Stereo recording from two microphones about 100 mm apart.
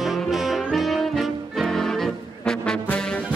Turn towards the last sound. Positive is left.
turn(degrees=10)  # may be behind; listen again after turning